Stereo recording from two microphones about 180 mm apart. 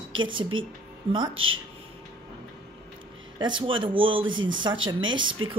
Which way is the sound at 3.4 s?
25° right (ahead or behind).